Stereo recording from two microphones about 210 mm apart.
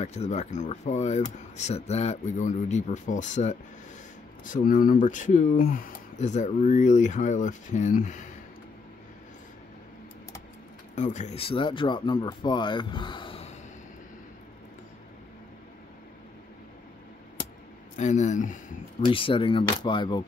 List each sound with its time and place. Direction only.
0.0 s speech: 30° left (ahead or behind)
11.0 s speech: 35° left (ahead or behind)
17.9 s speech: 35° left (ahead or behind)
19.0 s speech: 25° left (ahead or behind)